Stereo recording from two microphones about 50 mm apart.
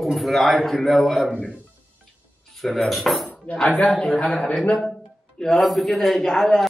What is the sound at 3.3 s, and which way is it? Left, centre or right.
Dishes, left.